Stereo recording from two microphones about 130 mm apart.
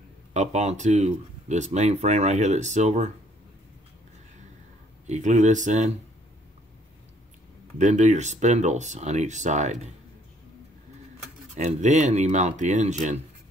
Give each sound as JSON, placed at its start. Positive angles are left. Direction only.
{"t": 0.3, "sound": "speech", "side_deg": -60}
{"t": 5.0, "sound": "speech", "side_deg": -65}
{"t": 7.8, "sound": "speech", "side_deg": -65}
{"t": 11.5, "sound": "speech", "side_deg": -65}